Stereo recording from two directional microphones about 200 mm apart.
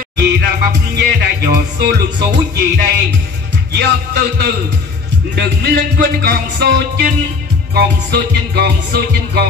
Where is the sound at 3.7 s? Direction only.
50° right (ahead or behind).